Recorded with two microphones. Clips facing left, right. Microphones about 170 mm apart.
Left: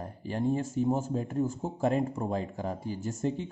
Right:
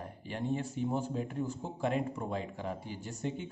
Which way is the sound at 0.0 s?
40° left (ahead or behind).